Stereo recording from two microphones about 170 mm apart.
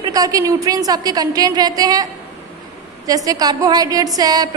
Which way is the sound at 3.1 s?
20° right (ahead or behind).